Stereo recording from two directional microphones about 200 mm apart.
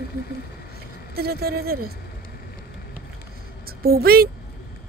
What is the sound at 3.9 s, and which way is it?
Speech, 50° right (ahead or behind).